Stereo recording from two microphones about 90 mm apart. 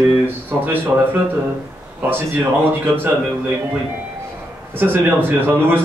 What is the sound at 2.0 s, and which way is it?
Speech, 25° right (ahead or behind).